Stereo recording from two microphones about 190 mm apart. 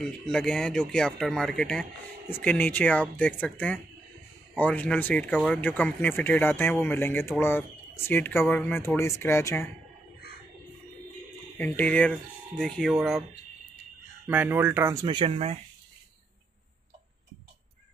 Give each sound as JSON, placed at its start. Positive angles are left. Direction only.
{"t": 0.0, "sound": "speech", "side_deg": 5}
{"t": 11.5, "sound": "speech", "side_deg": 10}
{"t": 15.0, "sound": "speech", "side_deg": -30}